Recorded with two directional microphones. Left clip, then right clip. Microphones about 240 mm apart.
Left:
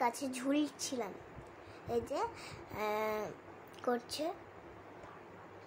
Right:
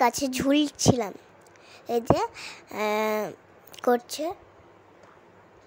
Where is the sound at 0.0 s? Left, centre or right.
Right.